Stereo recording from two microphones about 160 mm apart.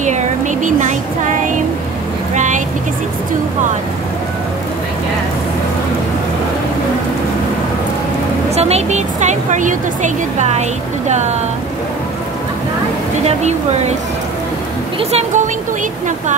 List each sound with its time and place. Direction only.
0.7 s a woman's voice: 50° right (ahead or behind)
2.3 s vehicle: 50° right (ahead or behind)
8.5 s a woman's voice: 40° right (ahead or behind)
13.4 s a woman's voice: 45° right (ahead or behind)
15.0 s speech: 40° right (ahead or behind)